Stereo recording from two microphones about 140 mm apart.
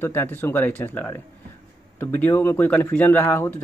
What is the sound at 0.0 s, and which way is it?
Speech, 15° left (ahead or behind).